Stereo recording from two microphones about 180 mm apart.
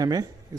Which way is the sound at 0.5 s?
20° right (ahead or behind).